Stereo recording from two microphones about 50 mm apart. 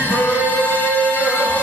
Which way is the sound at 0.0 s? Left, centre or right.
Left.